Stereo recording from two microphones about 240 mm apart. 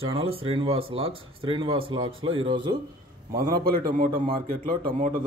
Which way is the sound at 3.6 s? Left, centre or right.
Right.